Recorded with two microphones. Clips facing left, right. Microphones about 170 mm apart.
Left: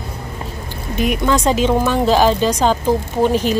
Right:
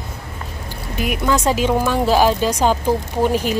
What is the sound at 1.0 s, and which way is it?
Speech, 5° right (ahead or behind).